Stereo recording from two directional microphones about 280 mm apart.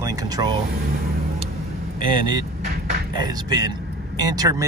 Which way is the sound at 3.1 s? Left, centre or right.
Centre.